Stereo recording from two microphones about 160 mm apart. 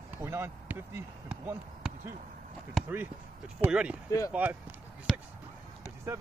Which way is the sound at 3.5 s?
5° right (ahead or behind).